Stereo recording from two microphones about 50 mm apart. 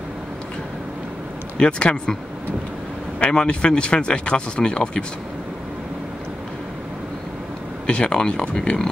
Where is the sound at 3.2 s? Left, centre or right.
Centre.